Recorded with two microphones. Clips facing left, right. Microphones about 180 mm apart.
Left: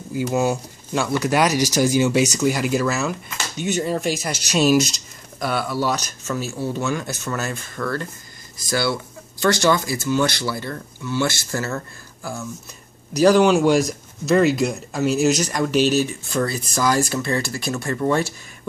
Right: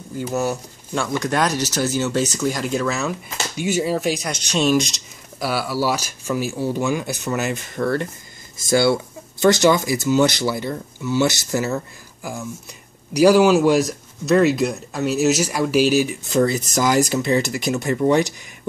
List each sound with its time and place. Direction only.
0.3 s speech: 10° left (ahead or behind); by 18.3 s 15° right (ahead or behind)